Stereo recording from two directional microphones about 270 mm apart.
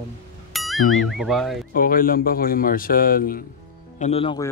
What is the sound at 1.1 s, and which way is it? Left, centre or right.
Speech, centre.